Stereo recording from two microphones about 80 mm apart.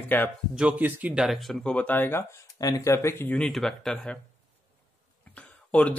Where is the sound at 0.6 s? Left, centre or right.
Centre.